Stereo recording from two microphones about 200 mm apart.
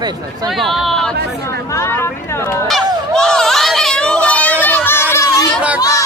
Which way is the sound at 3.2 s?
5° left (ahead or behind).